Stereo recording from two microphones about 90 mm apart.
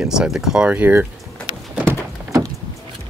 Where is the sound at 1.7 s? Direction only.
20° right (ahead or behind).